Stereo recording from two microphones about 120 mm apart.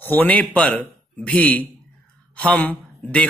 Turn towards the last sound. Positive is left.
turn(degrees=15)  # may be behind; listen again after turning